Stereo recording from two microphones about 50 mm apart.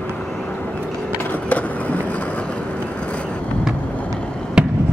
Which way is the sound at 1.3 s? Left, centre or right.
Left.